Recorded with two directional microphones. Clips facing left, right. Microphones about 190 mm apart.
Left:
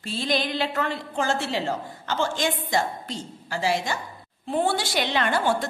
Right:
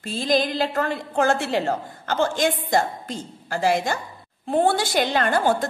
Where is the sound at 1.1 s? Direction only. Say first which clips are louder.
Right 6 dB; 55° right (ahead or behind).